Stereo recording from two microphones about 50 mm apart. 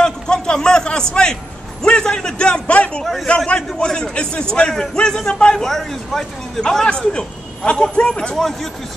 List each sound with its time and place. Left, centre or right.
0.0 s a sound: centre
1.8 s a man's voice: centre
3.0 s a man's voice: centre
3.3 s a man's voice: left
5.6 s a man's voice: centre